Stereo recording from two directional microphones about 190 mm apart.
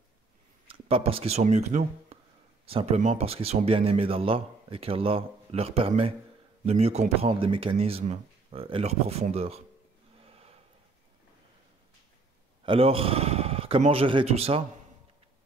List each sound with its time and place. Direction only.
0.7 s speech: 30° right (ahead or behind)
10.2 s a sound: 30° right (ahead or behind)
12.6 s a man's voice: 30° right (ahead or behind)